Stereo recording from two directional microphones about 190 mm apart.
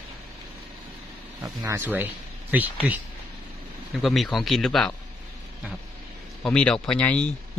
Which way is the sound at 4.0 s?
Centre (ahead or behind).